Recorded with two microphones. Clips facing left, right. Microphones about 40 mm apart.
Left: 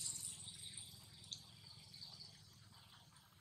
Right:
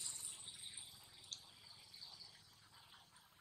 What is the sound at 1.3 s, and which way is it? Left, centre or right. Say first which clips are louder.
Drip: even; centre.